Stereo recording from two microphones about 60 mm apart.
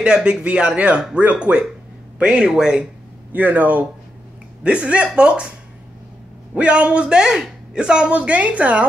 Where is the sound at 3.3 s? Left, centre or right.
Right.